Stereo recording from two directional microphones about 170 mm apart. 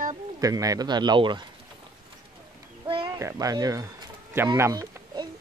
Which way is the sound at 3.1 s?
15° right (ahead or behind).